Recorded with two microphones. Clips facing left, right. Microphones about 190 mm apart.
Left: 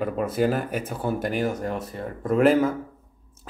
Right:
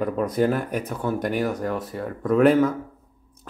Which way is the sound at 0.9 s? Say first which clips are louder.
Right 2 dB; 30° left (ahead or behind).